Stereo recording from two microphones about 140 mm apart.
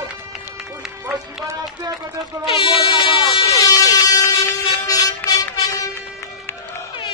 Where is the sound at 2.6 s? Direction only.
40° left (ahead or behind).